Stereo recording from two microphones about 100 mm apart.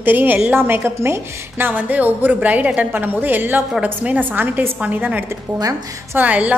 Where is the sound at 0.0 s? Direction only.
20° right (ahead or behind).